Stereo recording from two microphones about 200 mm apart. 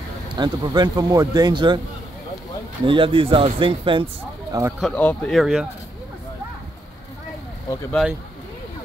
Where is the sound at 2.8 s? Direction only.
25° right (ahead or behind).